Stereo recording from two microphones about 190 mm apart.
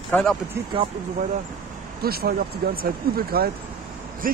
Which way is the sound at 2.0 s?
55° right (ahead or behind).